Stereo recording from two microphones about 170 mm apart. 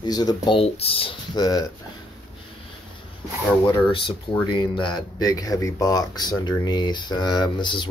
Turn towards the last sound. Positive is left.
turn(degrees=25)  # may be behind; listen again after turning